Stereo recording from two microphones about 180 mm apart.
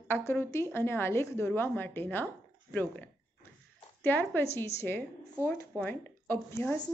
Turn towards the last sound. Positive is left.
turn(degrees=10)  # may be behind; listen again after turning